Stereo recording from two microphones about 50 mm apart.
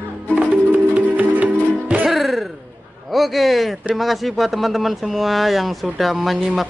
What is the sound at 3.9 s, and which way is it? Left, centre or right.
Speech, centre.